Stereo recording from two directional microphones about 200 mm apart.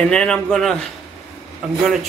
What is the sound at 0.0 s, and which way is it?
Speech, 5° left (ahead or behind).